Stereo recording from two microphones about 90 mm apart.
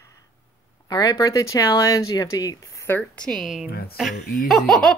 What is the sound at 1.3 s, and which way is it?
Speech, 35° left (ahead or behind).